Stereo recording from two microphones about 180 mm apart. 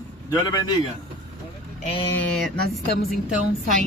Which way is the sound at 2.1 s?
Centre (ahead or behind).